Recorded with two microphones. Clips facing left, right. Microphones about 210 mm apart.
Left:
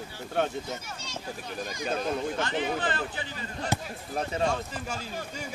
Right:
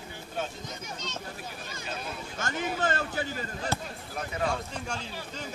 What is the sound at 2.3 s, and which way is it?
Chatter, 45° right (ahead or behind).